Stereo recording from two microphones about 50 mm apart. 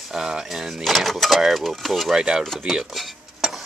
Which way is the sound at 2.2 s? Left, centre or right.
Centre.